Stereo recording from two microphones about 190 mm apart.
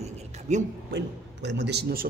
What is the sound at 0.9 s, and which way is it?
A man's voice, 65° right (ahead or behind).